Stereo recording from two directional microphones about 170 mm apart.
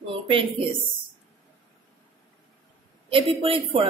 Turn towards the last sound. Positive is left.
turn(degrees=-35)  # may be behind; listen again after turning